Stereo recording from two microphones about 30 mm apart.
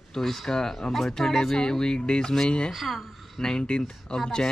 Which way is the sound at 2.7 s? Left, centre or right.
Centre.